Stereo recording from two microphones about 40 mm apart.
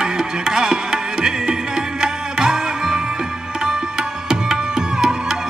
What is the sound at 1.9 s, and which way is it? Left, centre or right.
Music, centre.